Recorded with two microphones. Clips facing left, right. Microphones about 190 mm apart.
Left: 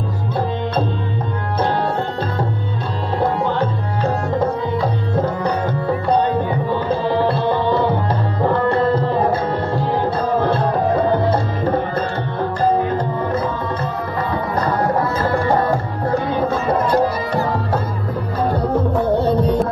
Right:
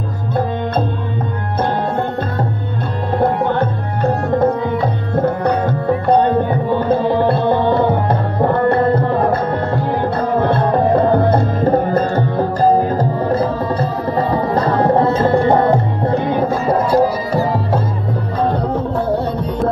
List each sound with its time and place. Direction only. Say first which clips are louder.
3.2 s tabla: right 3 dB; 55° right (ahead or behind)
5.2 s tabla: right 6 dB; 55° right (ahead or behind)
11.9 s music: right 6 dB; 40° right (ahead or behind); by 16.4 s 20° right (ahead or behind)
16.9 s music: right 3 dB; 5° right (ahead or behind)
19.1 s music: left 3 dB; centre (ahead or behind)